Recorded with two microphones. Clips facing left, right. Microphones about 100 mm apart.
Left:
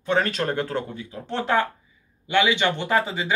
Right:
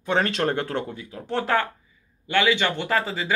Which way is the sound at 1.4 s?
15° left (ahead or behind).